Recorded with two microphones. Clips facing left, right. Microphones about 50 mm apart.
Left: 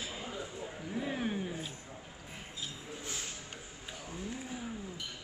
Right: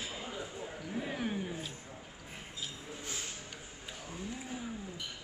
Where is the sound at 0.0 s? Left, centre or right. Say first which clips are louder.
Even; centre.